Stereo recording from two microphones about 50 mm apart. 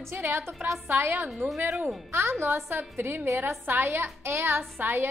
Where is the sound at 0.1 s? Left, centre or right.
Right.